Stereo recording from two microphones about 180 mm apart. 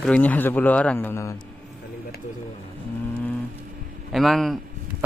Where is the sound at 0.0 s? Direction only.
10° left (ahead or behind).